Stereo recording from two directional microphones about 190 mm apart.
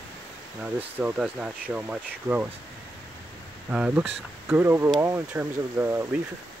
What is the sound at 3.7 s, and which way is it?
Speech, 5° right (ahead or behind).